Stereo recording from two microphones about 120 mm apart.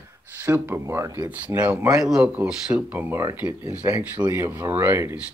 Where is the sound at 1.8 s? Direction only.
5° right (ahead or behind).